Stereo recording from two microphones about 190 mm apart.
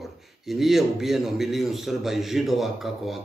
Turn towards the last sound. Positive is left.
turn(degrees=0)  # may be behind; listen again after turning